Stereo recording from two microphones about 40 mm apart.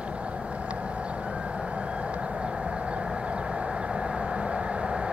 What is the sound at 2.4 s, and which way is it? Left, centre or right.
Vehicle, right.